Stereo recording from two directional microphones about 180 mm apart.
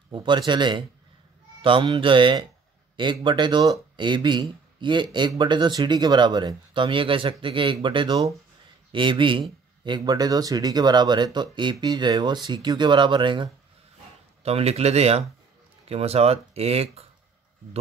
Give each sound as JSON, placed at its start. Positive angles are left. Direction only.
{"t": 0.1, "sound": "speech", "side_deg": -25}